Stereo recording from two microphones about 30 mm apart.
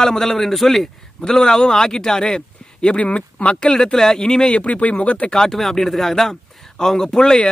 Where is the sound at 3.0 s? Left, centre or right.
Left.